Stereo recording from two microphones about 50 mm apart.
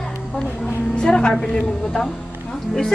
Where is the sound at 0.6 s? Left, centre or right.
Centre.